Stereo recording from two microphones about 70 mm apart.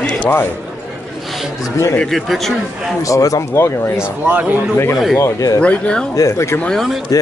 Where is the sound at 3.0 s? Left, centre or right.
Left.